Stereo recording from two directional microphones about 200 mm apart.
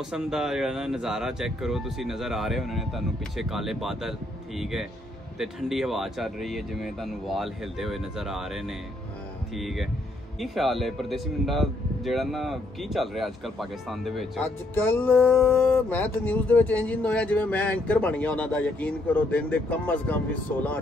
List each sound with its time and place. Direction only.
0.1 s speech: centre (ahead or behind)